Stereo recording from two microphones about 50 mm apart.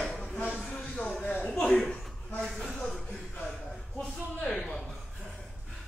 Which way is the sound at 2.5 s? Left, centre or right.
Centre.